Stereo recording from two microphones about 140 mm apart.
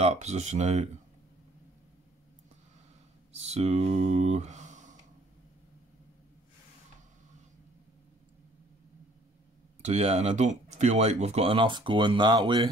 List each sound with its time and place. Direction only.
0.0 s speech: 50° right (ahead or behind)
3.3 s speech: 50° right (ahead or behind)
9.8 s speech: 50° right (ahead or behind); by 12.6 s 30° right (ahead or behind)